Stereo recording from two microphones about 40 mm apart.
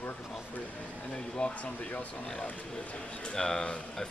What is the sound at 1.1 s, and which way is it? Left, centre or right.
Speech, left.